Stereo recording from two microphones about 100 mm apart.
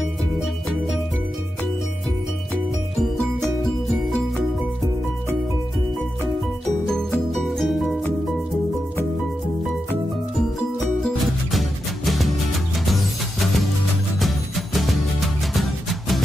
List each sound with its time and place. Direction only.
3.3 s music: 5° left (ahead or behind)
7.1 s music: 5° left (ahead or behind)
11.5 s music: centre (ahead or behind)
14.2 s music: centre (ahead or behind)